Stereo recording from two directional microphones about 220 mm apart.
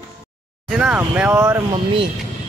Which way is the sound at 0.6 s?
5° right (ahead or behind).